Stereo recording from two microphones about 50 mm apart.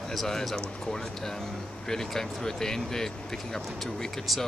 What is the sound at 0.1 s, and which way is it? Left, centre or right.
Speech, centre.